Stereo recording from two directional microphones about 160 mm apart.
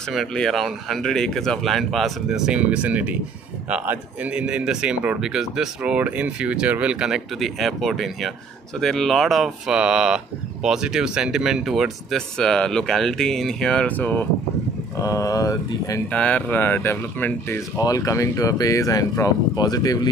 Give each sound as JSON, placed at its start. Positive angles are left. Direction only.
{"t": 0.1, "sound": "speech", "side_deg": 5}
{"t": 15.0, "sound": "speech", "side_deg": 20}
{"t": 16.1, "sound": "speech", "side_deg": 5}